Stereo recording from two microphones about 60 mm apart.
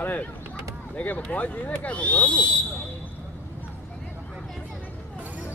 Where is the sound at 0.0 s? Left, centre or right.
Left.